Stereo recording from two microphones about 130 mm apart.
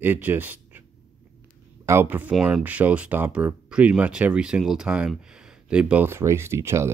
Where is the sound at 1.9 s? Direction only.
15° right (ahead or behind).